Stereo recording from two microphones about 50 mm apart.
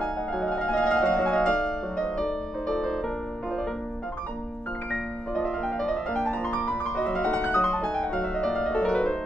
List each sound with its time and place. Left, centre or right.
0.0 s music: centre
4.9 s music: centre